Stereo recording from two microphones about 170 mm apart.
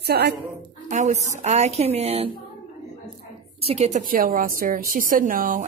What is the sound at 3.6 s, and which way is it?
A woman's voice, 40° right (ahead or behind).